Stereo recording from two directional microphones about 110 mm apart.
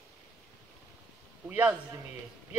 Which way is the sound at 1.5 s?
15° right (ahead or behind).